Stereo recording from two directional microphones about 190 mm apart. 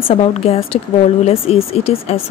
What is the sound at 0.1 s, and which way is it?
Speech, 35° left (ahead or behind).